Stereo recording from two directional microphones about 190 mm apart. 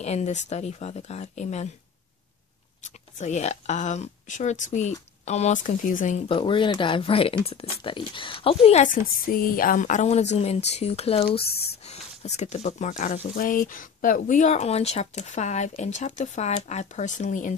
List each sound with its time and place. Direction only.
0.0 s speech: 35° left (ahead or behind)
2.8 s speech: 40° left (ahead or behind)
6.2 s speech: 25° left (ahead or behind); by 17.6 s 40° left (ahead or behind)